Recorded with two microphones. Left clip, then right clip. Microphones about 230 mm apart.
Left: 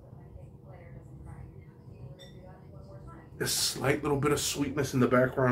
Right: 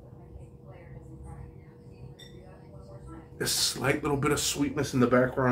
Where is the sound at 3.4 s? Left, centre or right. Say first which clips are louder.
Right 2 dB; centre.